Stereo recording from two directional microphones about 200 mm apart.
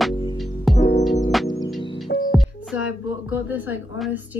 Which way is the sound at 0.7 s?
25° left (ahead or behind).